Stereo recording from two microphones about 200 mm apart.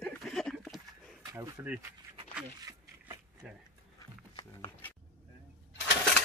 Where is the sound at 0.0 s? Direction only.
Centre (ahead or behind).